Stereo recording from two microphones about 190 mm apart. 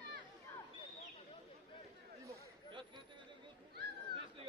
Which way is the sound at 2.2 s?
25° right (ahead or behind).